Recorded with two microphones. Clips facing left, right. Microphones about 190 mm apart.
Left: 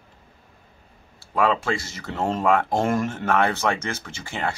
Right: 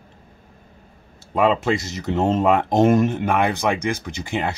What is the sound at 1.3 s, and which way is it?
Speech, 20° right (ahead or behind).